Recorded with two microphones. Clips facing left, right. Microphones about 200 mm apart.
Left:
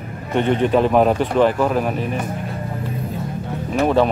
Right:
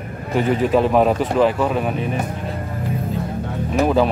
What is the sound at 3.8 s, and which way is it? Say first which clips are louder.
Speech: left 1 dB; centre (ahead or behind).